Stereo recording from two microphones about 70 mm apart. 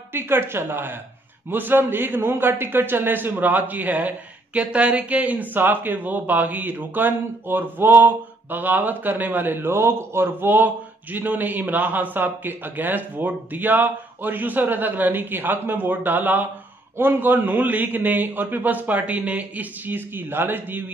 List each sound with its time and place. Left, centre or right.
0.1 s speech: right